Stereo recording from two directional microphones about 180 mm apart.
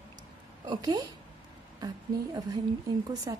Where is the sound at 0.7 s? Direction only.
20° right (ahead or behind).